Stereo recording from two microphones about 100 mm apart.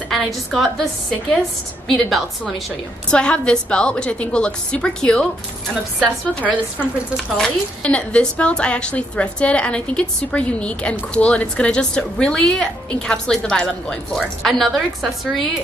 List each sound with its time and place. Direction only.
0.1 s a woman's voice: centre (ahead or behind)
1.9 s a woman's voice: centre (ahead or behind)
6.4 s a woman's voice: 15° left (ahead or behind)